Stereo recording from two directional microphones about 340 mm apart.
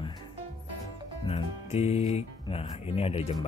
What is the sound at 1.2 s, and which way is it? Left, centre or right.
Speech, centre.